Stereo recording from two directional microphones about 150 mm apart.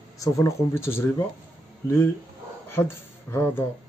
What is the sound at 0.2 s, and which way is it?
Speech, 20° left (ahead or behind).